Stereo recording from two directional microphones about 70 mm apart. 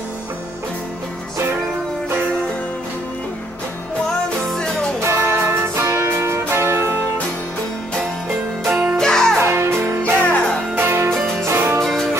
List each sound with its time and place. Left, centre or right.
4.5 s music: centre
5.0 s music: right
8.6 s music: centre
8.9 s music: centre
9.4 s music: right
11.8 s music: centre